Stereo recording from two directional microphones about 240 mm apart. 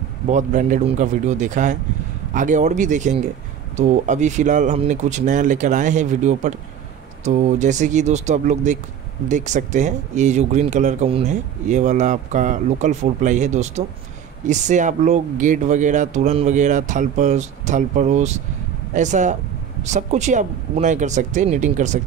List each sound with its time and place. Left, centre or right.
0.3 s speech: right